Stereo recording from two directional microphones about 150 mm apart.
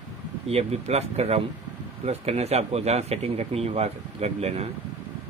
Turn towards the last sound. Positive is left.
turn(degrees=-45)  # may be behind; listen again after turning